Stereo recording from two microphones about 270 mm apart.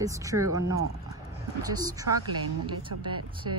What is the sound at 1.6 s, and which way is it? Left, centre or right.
Speech, centre.